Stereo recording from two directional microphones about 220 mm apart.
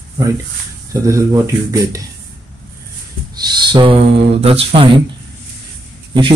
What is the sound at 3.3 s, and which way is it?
Speech, 20° right (ahead or behind).